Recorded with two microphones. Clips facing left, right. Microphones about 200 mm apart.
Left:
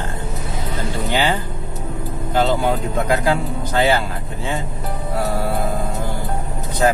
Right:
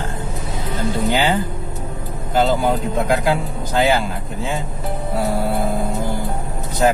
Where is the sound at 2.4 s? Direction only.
Centre (ahead or behind).